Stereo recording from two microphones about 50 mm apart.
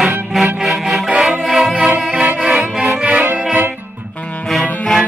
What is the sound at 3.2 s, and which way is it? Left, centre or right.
Music, right.